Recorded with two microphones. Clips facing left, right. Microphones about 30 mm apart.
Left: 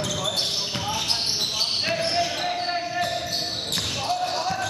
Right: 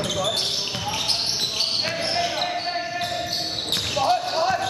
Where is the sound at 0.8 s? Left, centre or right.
Centre.